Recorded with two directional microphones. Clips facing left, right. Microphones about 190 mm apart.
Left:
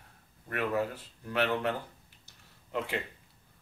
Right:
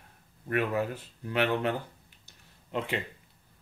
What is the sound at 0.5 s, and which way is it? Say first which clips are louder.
Speech: right 2 dB; 15° right (ahead or behind).